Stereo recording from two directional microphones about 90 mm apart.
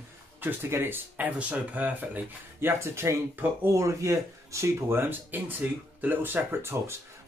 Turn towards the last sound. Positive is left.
turn(degrees=-25)  # may be behind; listen again after turning